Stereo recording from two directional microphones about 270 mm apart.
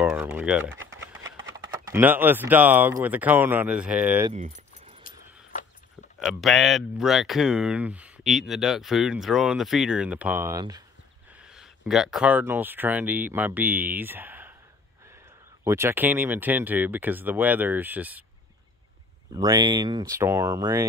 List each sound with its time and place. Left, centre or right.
0.0 s speech: centre
0.7 s a sound: right
1.5 s speech: centre
5.0 s keys jangling: left
6.1 s speech: centre
11.5 s speech: centre
15.6 s speech: centre
19.3 s speech: centre